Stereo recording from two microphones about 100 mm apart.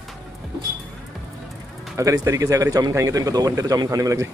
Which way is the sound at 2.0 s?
35° right (ahead or behind).